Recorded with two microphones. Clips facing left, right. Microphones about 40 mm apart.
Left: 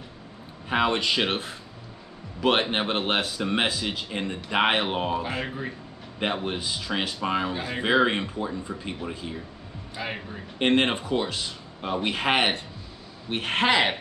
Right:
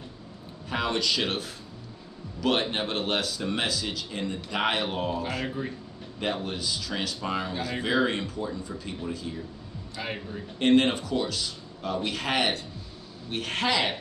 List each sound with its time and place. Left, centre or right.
0.7 s a man's voice: left
10.0 s a man's voice: centre
10.6 s a man's voice: left